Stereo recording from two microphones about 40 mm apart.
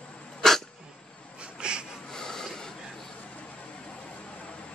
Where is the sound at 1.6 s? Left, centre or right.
Right.